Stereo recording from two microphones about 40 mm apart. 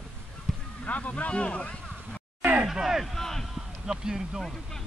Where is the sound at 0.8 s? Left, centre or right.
Left.